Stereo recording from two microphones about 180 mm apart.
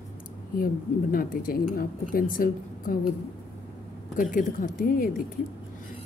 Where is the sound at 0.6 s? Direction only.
50° left (ahead or behind).